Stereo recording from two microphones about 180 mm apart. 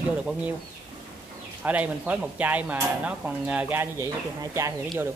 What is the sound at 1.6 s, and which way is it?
Speech, 10° right (ahead or behind).